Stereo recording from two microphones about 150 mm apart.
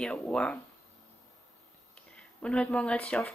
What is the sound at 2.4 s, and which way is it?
Speech, 5° left (ahead or behind).